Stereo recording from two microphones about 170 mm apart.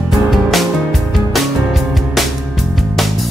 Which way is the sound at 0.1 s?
Centre (ahead or behind).